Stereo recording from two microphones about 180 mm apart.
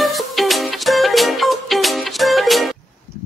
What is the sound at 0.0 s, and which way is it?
Music, centre (ahead or behind).